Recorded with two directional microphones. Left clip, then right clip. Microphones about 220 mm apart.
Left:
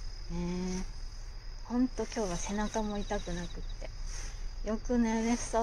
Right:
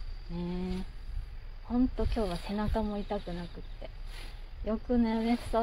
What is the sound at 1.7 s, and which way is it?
Speech, 15° right (ahead or behind).